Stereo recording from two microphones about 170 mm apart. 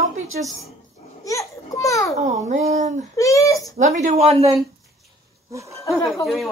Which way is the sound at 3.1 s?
20° left (ahead or behind).